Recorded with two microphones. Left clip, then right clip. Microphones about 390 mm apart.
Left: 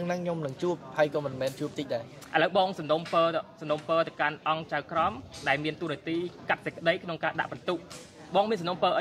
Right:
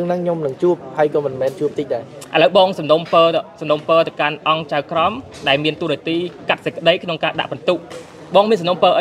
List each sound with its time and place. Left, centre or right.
0.1 s a man's voice: left
2.3 s speech: right